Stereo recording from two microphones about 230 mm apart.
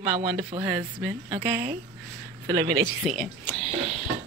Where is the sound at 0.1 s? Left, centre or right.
Right.